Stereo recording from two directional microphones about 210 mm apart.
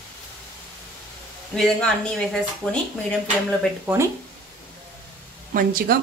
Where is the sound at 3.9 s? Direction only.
5° right (ahead or behind).